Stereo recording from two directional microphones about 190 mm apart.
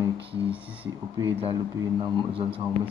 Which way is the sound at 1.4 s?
25° right (ahead or behind).